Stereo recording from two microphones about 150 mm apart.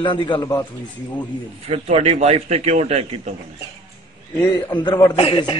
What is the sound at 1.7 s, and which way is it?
A man's voice, 45° right (ahead or behind).